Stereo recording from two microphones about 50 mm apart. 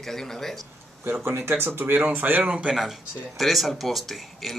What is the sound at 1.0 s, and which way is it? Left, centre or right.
Speech, right.